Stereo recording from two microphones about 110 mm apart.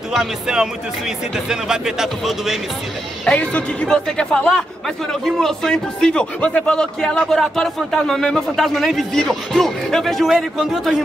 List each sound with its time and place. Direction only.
0.1 s a man's voice: 5° right (ahead or behind)
3.3 s a man's voice: 10° left (ahead or behind)